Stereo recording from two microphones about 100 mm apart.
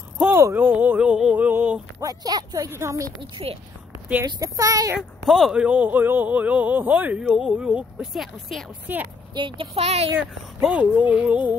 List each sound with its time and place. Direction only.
0.3 s a sound: 20° right (ahead or behind)
2.0 s speech: 40° right (ahead or behind)
3.2 s a woman's voice: 65° right (ahead or behind)
4.4 s speech: 35° right (ahead or behind)
5.2 s speech: 5° right (ahead or behind)
7.2 s speech: 5° right (ahead or behind)
9.3 s a child's voice: 50° right (ahead or behind)
9.8 s speech: 90° right
10.1 s speech: 15° right (ahead or behind)